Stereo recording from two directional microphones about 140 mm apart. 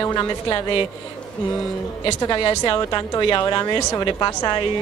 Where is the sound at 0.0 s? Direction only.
30° left (ahead or behind).